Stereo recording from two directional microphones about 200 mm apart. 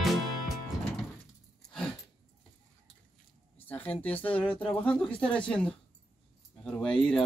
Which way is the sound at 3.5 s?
10° left (ahead or behind).